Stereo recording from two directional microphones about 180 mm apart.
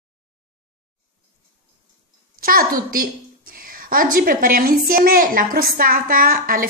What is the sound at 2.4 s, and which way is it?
A woman's voice, 55° right (ahead or behind).